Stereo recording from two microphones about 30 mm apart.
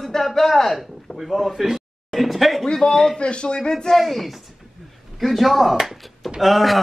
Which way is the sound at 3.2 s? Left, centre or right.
Left.